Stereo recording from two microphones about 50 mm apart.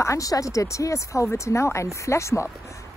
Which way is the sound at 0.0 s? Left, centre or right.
Left.